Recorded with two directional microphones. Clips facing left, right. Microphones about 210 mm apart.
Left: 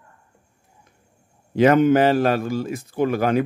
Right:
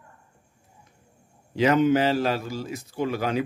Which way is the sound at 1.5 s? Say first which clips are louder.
Left 5 dB; 55° left (ahead or behind).